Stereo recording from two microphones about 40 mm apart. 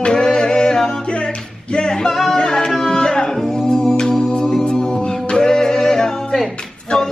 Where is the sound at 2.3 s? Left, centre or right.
Centre.